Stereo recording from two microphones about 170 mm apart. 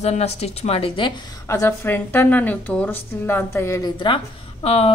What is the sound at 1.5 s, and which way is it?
A woman's voice, 15° left (ahead or behind).